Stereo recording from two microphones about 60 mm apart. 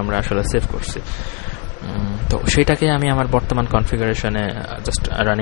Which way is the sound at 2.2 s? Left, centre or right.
Centre.